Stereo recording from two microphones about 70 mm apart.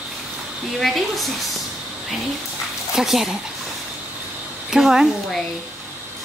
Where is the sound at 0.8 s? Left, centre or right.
Centre.